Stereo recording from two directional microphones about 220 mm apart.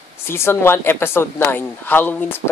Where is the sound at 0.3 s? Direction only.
10° left (ahead or behind).